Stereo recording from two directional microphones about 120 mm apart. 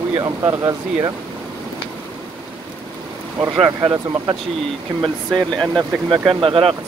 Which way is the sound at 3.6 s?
35° right (ahead or behind).